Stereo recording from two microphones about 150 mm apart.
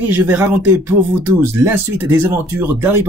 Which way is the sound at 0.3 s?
10° right (ahead or behind).